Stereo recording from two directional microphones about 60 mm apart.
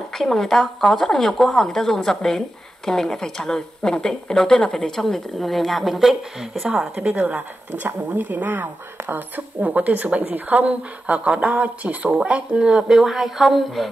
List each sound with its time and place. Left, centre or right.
0.1 s speech: centre
7.1 s speech: right
12.7 s speech: centre